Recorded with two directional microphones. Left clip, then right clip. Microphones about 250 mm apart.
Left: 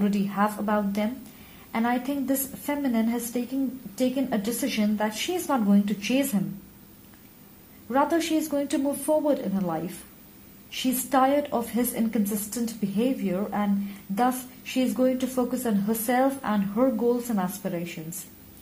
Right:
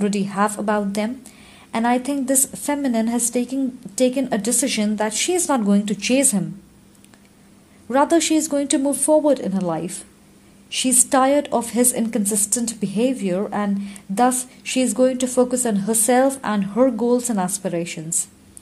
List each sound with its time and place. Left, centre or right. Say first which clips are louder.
0.0 s a woman's voice: right 5 dB; right
7.9 s a woman's voice: right 7 dB; right